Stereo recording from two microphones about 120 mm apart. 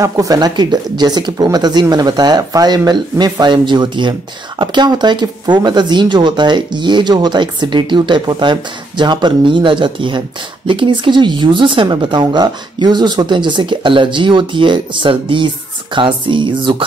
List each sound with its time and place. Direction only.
0.0 s speech: 30° right (ahead or behind)